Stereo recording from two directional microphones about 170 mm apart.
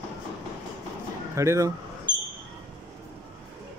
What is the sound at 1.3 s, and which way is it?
Speech, 15° right (ahead or behind).